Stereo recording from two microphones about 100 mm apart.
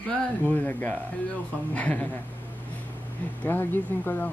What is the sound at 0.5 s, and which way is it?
A man's voice, 15° left (ahead or behind).